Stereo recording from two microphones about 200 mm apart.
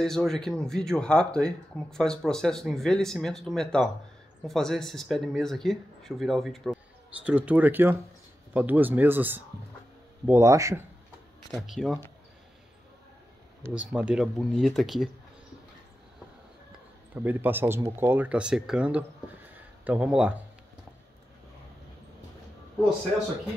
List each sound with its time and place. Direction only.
0.0 s speech: centre (ahead or behind); by 10.9 s 15° right (ahead or behind)
11.6 s speech: centre (ahead or behind)
13.8 s speech: 5° right (ahead or behind)
17.1 s speech: 10° right (ahead or behind)